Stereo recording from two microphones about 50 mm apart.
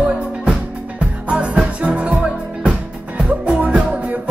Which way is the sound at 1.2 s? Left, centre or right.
Right.